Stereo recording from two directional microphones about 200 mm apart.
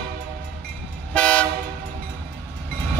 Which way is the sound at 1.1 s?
5° left (ahead or behind).